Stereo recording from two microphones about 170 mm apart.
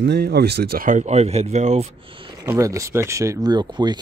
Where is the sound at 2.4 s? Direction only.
20° right (ahead or behind).